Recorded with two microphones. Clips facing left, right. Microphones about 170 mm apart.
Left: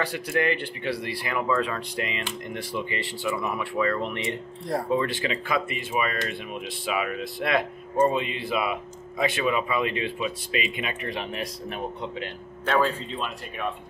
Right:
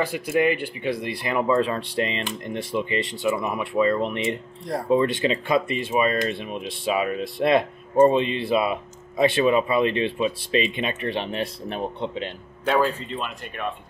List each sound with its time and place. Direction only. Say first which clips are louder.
0.0 s speech: right 4 dB; 15° right (ahead or behind)
1.0 s speech: right 6 dB; 25° right (ahead or behind)
12.8 s speech: right 2 dB; centre (ahead or behind)